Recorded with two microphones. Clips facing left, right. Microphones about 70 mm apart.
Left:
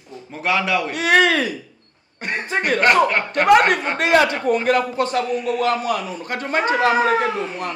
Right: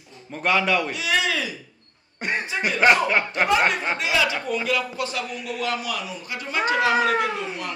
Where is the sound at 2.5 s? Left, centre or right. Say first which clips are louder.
Left 2 dB; left.